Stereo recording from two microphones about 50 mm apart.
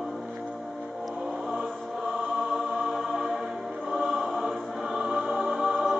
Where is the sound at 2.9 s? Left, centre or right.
Centre.